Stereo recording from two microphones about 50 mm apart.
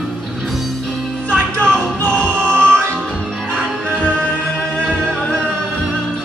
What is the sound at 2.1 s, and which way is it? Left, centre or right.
Music, left.